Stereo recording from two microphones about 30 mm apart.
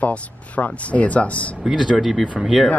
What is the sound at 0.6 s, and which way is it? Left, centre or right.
Speech, left.